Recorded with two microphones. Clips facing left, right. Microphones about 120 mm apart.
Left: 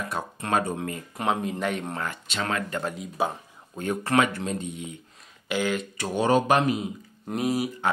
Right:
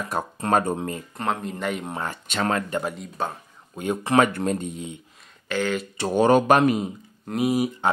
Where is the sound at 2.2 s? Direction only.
50° right (ahead or behind).